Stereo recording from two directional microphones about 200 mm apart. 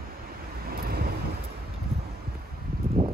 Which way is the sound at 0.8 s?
50° right (ahead or behind).